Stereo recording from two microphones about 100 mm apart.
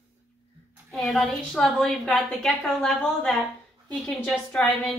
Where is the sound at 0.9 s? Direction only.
Centre (ahead or behind).